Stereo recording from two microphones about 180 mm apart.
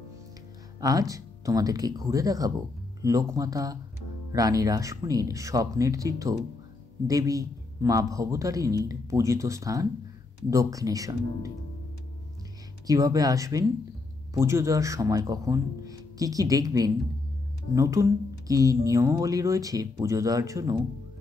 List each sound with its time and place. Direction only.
0.7 s a man's voice: 20° right (ahead or behind)
12.8 s a man's voice: 20° right (ahead or behind)